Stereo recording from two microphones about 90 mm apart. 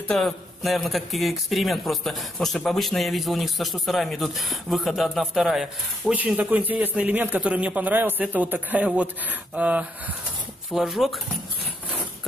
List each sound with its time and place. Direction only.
0.1 s a man's voice: centre (ahead or behind)
6.1 s a man's voice: 20° right (ahead or behind)
10.7 s a man's voice: centre (ahead or behind)